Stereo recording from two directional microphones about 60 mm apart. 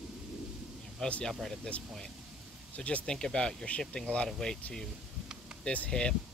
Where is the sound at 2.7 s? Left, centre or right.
Left.